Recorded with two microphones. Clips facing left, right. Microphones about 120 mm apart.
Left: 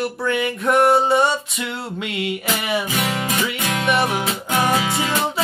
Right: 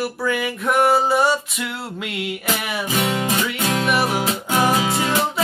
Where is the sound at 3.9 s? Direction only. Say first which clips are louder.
Left 3 dB; centre (ahead or behind).